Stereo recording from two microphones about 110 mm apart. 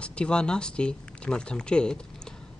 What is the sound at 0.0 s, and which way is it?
Speech, 10° left (ahead or behind).